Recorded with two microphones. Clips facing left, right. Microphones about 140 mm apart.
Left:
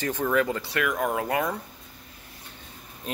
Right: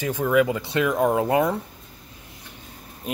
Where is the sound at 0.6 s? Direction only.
20° right (ahead or behind).